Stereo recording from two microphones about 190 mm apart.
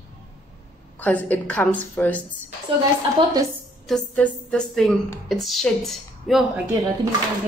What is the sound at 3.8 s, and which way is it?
A woman's voice, 5° left (ahead or behind).